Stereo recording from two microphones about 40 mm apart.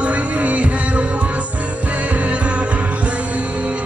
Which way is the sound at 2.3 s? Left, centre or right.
Right.